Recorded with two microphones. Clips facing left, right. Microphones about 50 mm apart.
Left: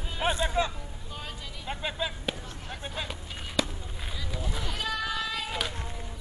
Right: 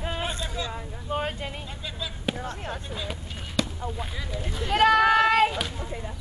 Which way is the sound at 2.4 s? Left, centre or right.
Right.